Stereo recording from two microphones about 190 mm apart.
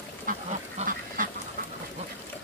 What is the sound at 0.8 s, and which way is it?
Duck, 45° right (ahead or behind).